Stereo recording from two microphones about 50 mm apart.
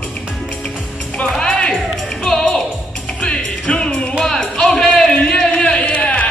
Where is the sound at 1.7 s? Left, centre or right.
Centre.